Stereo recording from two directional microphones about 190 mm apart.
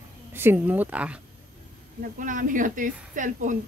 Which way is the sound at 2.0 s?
45° right (ahead or behind).